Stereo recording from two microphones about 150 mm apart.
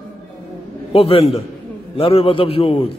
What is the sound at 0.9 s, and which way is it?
A man's voice, 40° left (ahead or behind).